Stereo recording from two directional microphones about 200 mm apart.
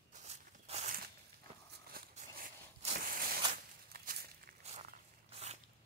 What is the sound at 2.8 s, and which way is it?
Walk, 45° right (ahead or behind).